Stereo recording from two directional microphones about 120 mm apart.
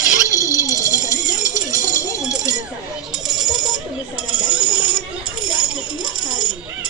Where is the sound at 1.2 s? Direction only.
90° left.